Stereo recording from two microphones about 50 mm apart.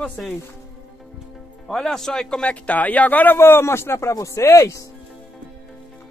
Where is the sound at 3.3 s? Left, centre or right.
Left.